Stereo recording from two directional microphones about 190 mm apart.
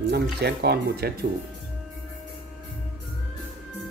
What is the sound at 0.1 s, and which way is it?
Speech, 60° right (ahead or behind).